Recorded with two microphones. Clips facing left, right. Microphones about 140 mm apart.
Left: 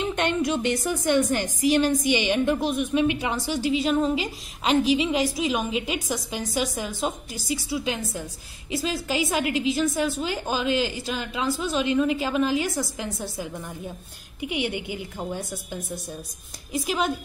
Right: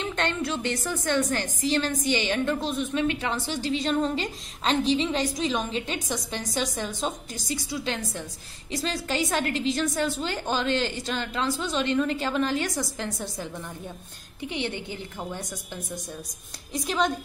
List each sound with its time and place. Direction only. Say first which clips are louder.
0.0 s a woman's voice: left 4 dB; 15° left (ahead or behind)